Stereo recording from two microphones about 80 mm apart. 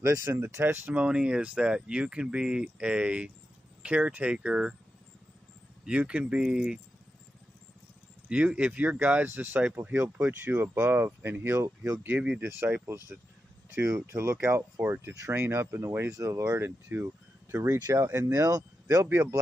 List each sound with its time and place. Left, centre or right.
0.0 s speech: right
0.9 s speech: centre
5.9 s speech: centre
8.3 s speech: centre; by 12.1 s right
12.1 s speech: right
16.1 s speech: right
17.9 s speech: right